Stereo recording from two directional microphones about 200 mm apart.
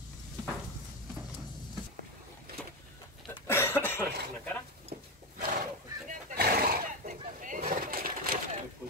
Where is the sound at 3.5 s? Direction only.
10° left (ahead or behind).